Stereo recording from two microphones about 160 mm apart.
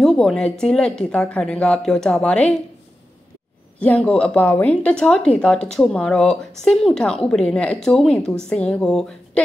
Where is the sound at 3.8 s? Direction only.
5° left (ahead or behind).